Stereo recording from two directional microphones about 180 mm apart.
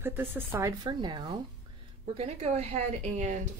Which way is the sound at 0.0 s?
10° right (ahead or behind).